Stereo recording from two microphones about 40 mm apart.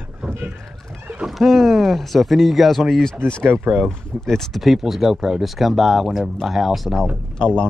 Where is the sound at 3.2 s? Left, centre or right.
Right.